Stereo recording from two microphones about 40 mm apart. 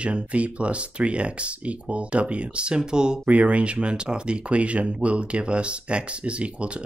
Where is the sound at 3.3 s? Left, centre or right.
Right.